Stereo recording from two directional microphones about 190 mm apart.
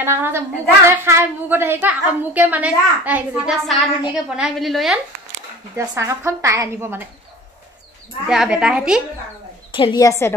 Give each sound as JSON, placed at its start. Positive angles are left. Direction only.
{"t": 0.0, "sound": "a woman's voice", "side_deg": -10}
{"t": 5.8, "sound": "a woman's voice", "side_deg": -15}
{"t": 8.3, "sound": "a woman's voice", "side_deg": -5}
{"t": 9.7, "sound": "a woman's voice", "side_deg": 25}